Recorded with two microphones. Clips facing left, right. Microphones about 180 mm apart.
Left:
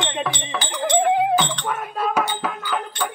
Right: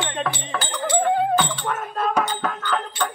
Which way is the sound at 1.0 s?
15° left (ahead or behind).